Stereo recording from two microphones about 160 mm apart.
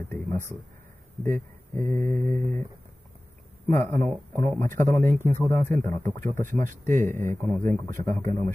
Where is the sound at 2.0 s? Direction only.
55° right (ahead or behind).